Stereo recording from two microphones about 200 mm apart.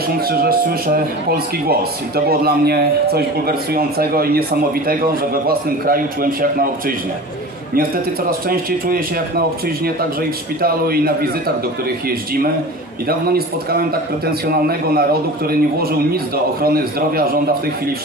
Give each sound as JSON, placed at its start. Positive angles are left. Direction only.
{"t": 0.3, "sound": "a man's voice", "side_deg": -50}
{"t": 8.3, "sound": "a man's voice", "side_deg": -45}
{"t": 10.6, "sound": "a man's voice", "side_deg": -50}
{"t": 13.3, "sound": "a man's voice", "side_deg": -50}
{"t": 16.6, "sound": "a man's voice", "side_deg": -50}